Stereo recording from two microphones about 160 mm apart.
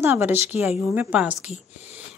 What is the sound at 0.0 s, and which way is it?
A woman's voice, 15° right (ahead or behind).